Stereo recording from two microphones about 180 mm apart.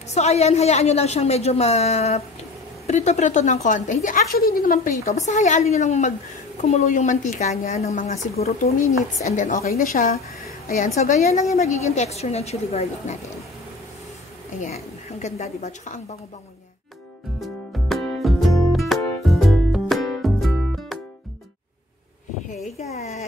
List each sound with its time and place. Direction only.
0.1 s a woman's voice: 40° left (ahead or behind); by 4.9 s 55° left (ahead or behind)
5.1 s a woman's voice: 40° left (ahead or behind)
14.6 s a woman's voice: 40° left (ahead or behind)
17.4 s music: centre (ahead or behind)
22.8 s a woman's voice: 35° left (ahead or behind)